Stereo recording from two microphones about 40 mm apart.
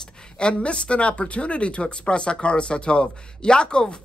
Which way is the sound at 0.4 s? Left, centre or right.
Left.